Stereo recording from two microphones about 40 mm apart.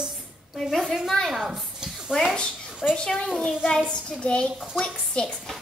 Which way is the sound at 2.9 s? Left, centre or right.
Centre.